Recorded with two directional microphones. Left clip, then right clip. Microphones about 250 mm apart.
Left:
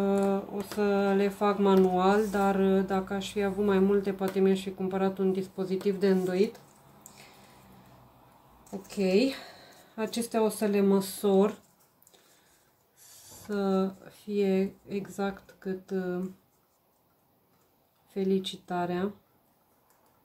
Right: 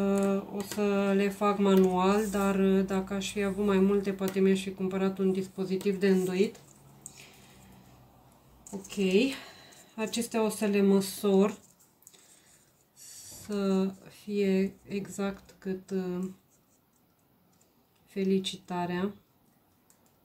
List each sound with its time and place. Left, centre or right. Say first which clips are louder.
0.0 s speech: left 2 dB; centre
8.9 s speech: left 1 dB; centre
13.6 s speech: left 2 dB; centre
18.3 s speech: left 1 dB; centre